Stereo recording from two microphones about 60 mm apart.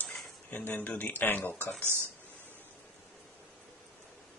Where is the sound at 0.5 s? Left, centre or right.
Left.